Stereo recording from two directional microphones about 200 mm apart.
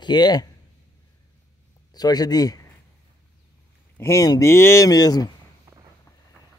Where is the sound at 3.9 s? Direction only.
15° left (ahead or behind).